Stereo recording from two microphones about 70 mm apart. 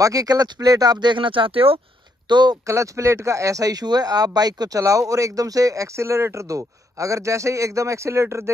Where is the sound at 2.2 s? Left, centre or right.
Right.